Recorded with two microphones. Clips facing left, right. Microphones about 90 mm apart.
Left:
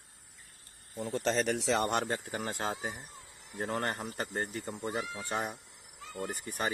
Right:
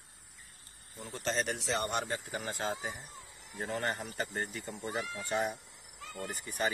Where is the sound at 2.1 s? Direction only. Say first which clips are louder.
Left 2 dB; 45° left (ahead or behind).